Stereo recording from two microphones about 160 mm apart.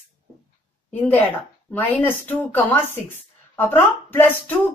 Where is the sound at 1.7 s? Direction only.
10° left (ahead or behind).